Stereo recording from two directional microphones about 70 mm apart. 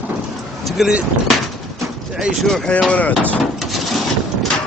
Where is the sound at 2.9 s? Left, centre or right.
Left.